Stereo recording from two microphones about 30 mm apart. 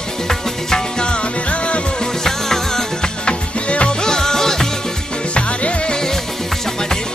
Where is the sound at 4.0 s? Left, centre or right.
Left.